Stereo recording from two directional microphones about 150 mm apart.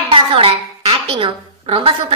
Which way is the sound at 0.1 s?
35° right (ahead or behind).